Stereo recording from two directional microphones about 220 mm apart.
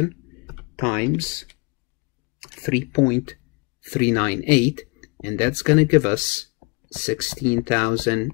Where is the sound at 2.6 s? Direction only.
5° left (ahead or behind).